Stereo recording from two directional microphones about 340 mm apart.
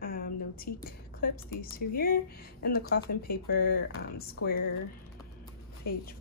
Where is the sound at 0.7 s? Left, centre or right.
Left.